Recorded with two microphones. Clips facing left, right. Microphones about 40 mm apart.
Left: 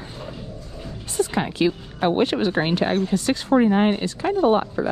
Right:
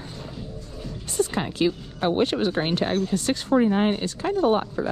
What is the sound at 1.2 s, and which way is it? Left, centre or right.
Speech, left.